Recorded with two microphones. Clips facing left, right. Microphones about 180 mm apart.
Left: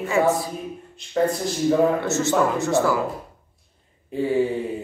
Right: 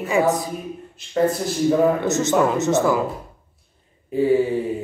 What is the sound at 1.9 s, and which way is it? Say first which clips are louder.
Speech: right 2 dB; 20° right (ahead or behind).